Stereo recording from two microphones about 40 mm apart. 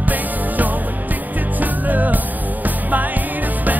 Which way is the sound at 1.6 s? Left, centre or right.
Right.